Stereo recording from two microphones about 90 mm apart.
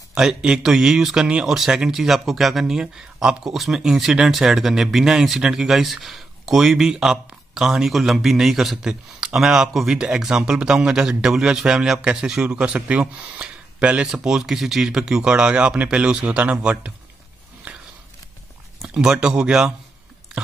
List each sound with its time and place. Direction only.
0.1 s speech: 10° right (ahead or behind)
17.7 s a sound: 20° right (ahead or behind)
18.8 s speech: 10° right (ahead or behind)